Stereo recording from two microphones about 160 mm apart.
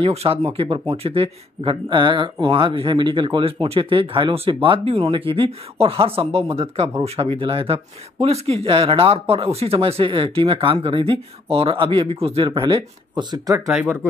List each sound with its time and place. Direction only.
0.0 s speech: 40° right (ahead or behind)